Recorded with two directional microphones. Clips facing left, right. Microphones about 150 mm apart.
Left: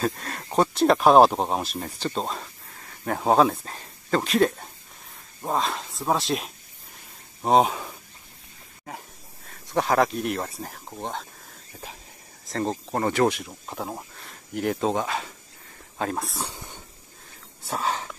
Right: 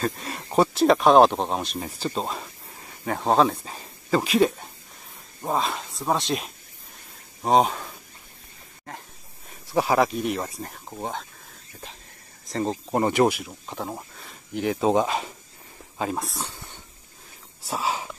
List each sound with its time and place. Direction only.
0.0 s speech: centre (ahead or behind)
9.7 s speech: 5° right (ahead or behind)
12.4 s speech: centre (ahead or behind)
12.9 s speech: 15° right (ahead or behind)
13.4 s speech: 5° left (ahead or behind)
14.9 s speech: 20° right (ahead or behind)
16.0 s speech: centre (ahead or behind)
17.6 s speech: 5° right (ahead or behind)